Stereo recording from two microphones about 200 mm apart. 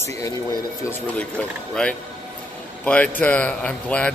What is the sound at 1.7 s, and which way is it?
Speech, 5° left (ahead or behind).